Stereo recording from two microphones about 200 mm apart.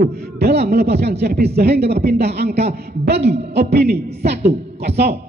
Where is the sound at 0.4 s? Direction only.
55° right (ahead or behind).